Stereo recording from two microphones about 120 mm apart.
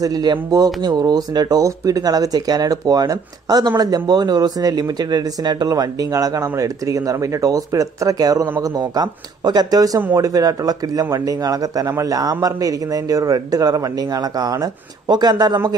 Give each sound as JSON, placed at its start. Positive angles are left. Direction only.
{"t": 0.0, "sound": "speech", "side_deg": -35}